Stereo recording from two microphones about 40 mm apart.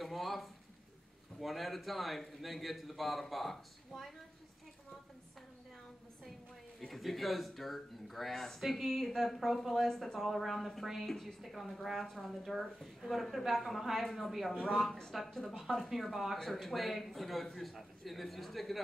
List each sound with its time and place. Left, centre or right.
0.0 s a sound: centre
1.4 s a man's voice: centre
6.9 s a man's voice: centre
16.3 s a man's voice: centre